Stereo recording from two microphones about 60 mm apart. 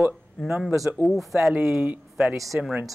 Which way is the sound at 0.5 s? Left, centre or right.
Centre.